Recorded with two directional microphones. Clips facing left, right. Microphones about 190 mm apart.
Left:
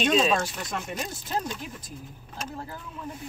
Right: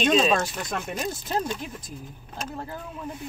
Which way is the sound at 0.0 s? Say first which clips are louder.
Right 2 dB; 45° right (ahead or behind).